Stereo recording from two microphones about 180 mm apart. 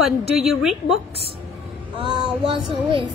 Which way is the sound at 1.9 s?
25° right (ahead or behind).